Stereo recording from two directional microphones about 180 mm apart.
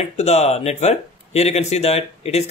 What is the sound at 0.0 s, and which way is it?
Speech, 40° left (ahead or behind).